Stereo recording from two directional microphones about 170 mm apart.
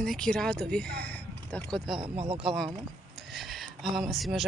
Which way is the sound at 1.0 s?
10° left (ahead or behind).